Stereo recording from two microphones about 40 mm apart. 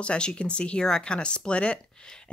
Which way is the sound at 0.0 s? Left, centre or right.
Left.